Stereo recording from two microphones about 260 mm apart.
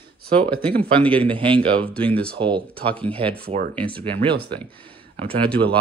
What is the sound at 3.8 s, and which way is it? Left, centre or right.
Speech, centre.